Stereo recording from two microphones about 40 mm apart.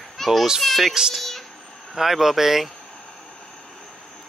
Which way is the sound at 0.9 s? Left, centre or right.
Centre.